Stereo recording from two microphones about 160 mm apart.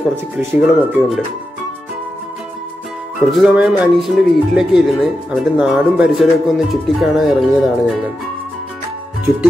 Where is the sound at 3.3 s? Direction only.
5° right (ahead or behind).